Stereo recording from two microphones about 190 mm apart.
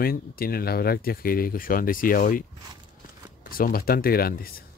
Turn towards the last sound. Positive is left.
turn(degrees=50)  # may be behind; listen again after turning